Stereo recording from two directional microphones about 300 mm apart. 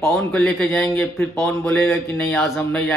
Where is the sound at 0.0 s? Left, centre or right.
Centre.